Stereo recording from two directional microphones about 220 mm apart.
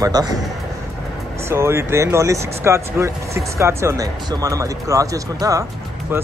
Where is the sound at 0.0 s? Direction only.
15° right (ahead or behind).